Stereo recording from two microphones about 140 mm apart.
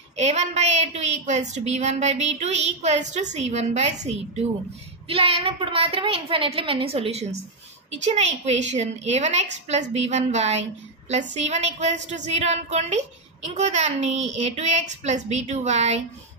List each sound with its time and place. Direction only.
0.1 s a woman's voice: 50° right (ahead or behind)
5.0 s a woman's voice: 40° right (ahead or behind)